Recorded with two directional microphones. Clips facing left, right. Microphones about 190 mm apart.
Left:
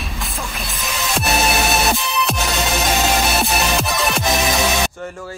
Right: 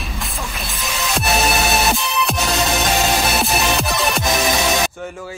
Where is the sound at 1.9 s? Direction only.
Centre (ahead or behind).